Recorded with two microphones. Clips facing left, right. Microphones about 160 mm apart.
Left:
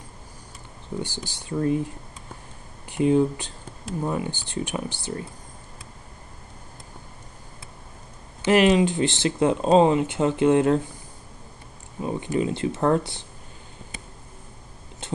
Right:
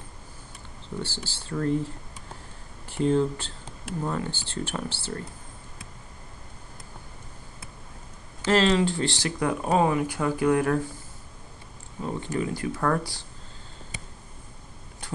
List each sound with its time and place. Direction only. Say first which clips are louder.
0.8 s speech: left 3 dB; 15° left (ahead or behind)
2.9 s speech: left 3 dB; 15° left (ahead or behind)
8.4 s speech: left 4 dB; 15° left (ahead or behind)
12.0 s speech: left 4 dB; 15° left (ahead or behind)
15.0 s a sound: left 5 dB; 25° left (ahead or behind)